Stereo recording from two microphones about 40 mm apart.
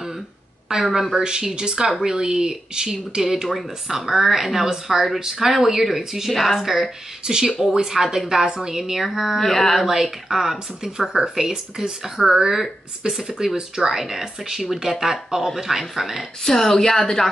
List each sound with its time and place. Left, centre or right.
0.7 s speech: centre
7.2 s speech: centre
9.4 s a woman's voice: centre
10.3 s speech: centre
13.1 s speech: centre
16.4 s a woman's voice: centre